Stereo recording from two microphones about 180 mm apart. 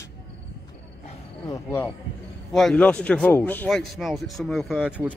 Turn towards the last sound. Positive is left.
turn(degrees=-5)  # may be behind; listen again after turning